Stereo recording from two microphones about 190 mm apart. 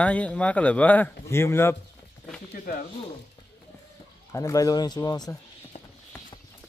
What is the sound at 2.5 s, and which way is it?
Speech, 45° left (ahead or behind).